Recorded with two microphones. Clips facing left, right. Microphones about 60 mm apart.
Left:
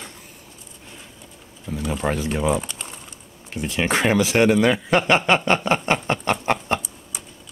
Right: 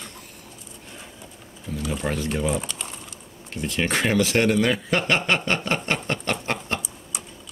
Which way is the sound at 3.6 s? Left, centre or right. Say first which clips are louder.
Left 3 dB; centre.